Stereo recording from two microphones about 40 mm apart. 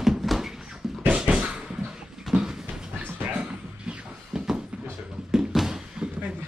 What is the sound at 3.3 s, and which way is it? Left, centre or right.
Music, right.